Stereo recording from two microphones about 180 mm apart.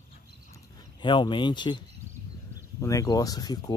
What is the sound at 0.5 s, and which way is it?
Speech, 25° left (ahead or behind).